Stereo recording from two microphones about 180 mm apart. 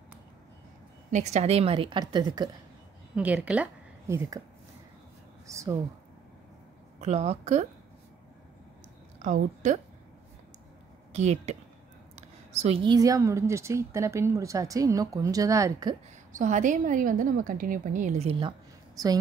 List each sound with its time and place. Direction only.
1.1 s a woman's voice: 40° right (ahead or behind); by 2.5 s 25° right (ahead or behind)
3.2 s a woman's voice: 10° right (ahead or behind)
5.5 s a woman's voice: 15° right (ahead or behind)
7.0 s a woman's voice: 35° right (ahead or behind)
9.2 s a woman's voice: 45° right (ahead or behind)
11.1 s a woman's voice: 35° right (ahead or behind); by 16.0 s 20° right (ahead or behind)
16.3 s a woman's voice: 45° right (ahead or behind)